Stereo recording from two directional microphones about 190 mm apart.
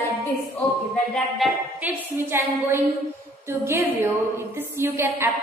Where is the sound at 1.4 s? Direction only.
10° right (ahead or behind).